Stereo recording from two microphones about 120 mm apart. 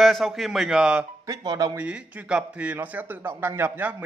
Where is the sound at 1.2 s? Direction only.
30° right (ahead or behind).